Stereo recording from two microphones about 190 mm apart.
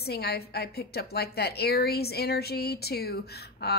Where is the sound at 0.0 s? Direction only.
55° left (ahead or behind).